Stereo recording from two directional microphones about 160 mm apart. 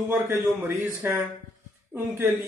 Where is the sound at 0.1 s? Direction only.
15° right (ahead or behind).